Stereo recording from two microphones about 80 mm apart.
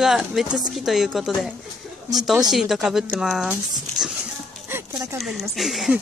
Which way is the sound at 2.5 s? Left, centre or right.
Centre.